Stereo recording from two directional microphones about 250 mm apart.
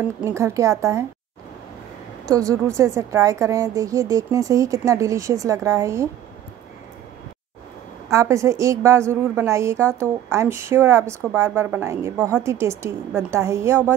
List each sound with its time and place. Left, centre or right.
0.0 s a woman's voice: centre
2.2 s a woman's voice: centre
8.1 s a woman's voice: centre